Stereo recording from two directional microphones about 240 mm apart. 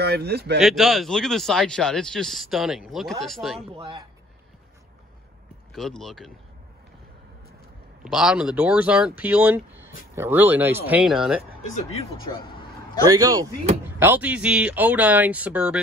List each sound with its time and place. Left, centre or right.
0.0 s speech: right
0.6 s speech: centre
3.6 s speech: right
5.7 s speech: centre
8.0 s speech: centre
11.9 s speech: left
13.0 s speech: centre